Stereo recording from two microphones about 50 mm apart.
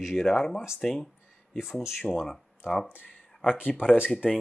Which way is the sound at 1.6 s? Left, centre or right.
Centre.